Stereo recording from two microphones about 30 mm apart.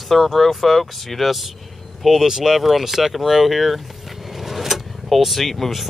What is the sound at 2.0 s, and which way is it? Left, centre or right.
Speech, centre.